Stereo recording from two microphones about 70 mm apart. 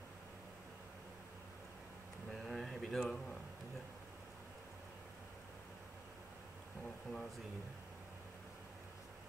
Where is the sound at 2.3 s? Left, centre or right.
Centre.